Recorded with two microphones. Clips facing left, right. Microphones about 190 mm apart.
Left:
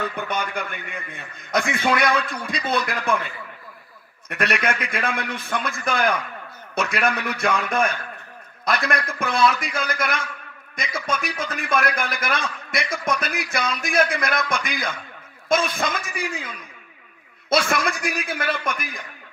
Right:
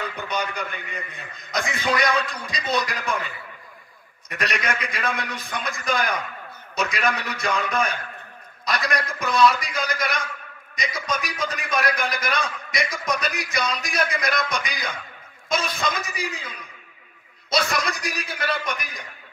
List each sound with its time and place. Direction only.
0.0 s a man's voice: 55° left (ahead or behind)
4.3 s a man's voice: 55° left (ahead or behind)